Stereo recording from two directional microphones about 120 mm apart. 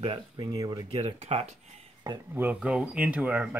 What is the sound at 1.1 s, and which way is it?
Speech, 70° right (ahead or behind).